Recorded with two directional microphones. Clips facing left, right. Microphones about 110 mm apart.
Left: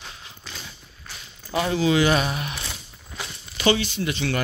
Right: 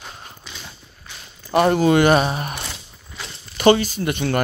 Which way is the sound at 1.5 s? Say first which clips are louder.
Right 6 dB; 60° right (ahead or behind).